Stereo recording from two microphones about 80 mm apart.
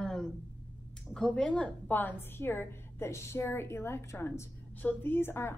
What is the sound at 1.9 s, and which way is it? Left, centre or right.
A woman's voice, left.